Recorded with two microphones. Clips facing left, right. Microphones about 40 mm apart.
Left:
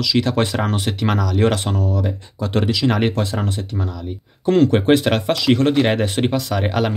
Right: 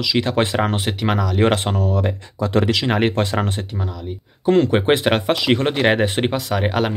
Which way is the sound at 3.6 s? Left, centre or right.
Centre.